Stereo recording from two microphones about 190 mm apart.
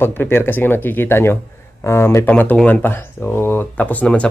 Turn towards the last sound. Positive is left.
turn(degrees=5)  # may be behind; listen again after turning